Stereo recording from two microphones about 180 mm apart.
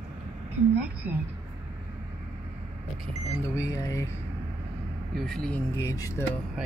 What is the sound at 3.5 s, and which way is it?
Speech, 15° left (ahead or behind).